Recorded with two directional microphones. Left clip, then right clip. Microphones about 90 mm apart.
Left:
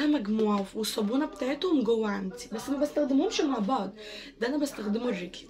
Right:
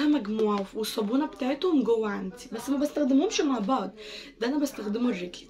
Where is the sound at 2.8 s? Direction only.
45° right (ahead or behind).